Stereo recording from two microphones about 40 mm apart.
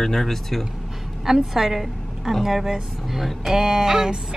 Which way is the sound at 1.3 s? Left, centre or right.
Centre.